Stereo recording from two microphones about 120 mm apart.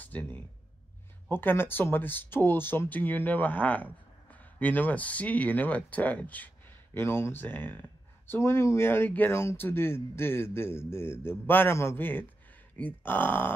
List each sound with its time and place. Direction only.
0.0 s speech: 15° left (ahead or behind)